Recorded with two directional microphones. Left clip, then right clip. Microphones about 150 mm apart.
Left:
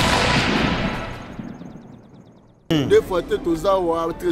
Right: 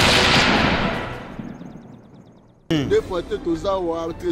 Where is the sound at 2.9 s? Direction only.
15° left (ahead or behind).